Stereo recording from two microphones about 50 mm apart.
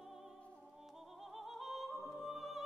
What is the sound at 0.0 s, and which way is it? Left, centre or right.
Music, centre.